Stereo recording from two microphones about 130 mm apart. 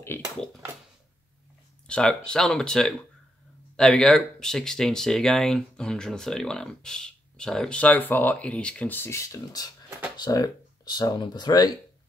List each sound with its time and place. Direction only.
0.1 s speech: 20° left (ahead or behind)
1.9 s speech: 5° left (ahead or behind); by 11.7 s 35° left (ahead or behind)